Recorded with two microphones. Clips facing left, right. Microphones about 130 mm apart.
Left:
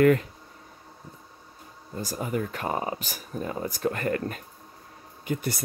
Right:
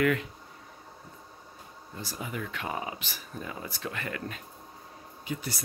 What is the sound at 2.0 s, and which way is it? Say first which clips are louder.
Speech: left 7 dB; 45° left (ahead or behind).